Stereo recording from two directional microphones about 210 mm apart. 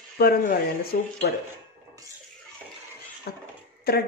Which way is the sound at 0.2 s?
45° left (ahead or behind).